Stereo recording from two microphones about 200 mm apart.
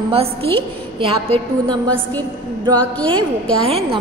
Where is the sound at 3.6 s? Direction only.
30° right (ahead or behind).